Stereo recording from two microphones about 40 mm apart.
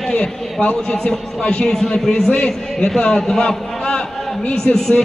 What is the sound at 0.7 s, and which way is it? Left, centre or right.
Speech, centre.